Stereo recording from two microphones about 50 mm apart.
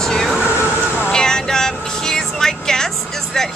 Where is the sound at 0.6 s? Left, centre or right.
Left.